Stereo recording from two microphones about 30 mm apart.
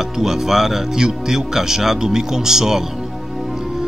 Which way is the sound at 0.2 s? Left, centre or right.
Centre.